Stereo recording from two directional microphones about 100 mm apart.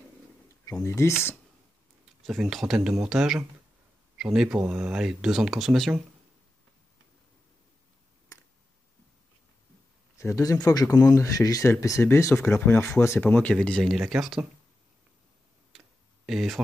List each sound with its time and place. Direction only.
0.7 s speech: 30° left (ahead or behind)
2.4 s speech: 5° right (ahead or behind)
10.1 s speech: 30° left (ahead or behind)
13.2 s speech: 15° left (ahead or behind); by 14.5 s 5° right (ahead or behind)
15.7 s tick-tock: centre (ahead or behind)
16.3 s speech: centre (ahead or behind)